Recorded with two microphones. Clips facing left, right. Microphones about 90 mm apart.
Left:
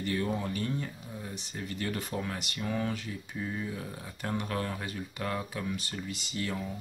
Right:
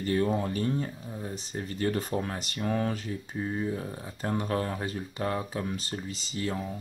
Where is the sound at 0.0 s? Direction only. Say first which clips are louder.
Right 5 dB; 35° right (ahead or behind).